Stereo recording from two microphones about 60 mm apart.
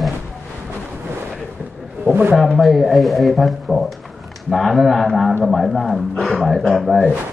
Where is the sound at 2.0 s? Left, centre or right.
Right.